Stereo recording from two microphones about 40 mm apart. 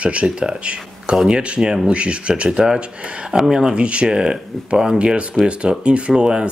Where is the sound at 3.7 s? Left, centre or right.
Right.